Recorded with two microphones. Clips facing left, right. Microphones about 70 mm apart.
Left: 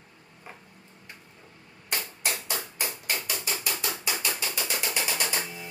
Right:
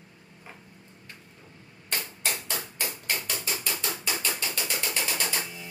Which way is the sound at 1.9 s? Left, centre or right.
Centre.